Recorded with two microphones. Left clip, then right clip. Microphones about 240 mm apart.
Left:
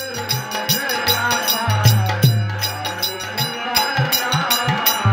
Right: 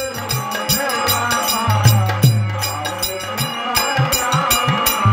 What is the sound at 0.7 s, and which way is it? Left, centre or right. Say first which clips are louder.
Music: even; centre.